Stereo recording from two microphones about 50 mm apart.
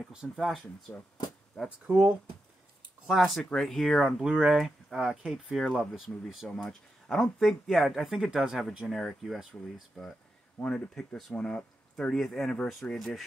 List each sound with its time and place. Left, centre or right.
0.4 s speech: centre
1.9 s speech: right
3.1 s speech: centre
4.2 s speech: centre
4.6 s speech: centre
5.6 s speech: centre
8.8 s speech: centre
12.2 s speech: centre